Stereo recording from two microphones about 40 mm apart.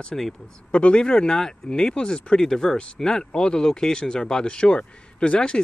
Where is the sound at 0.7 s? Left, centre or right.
Left.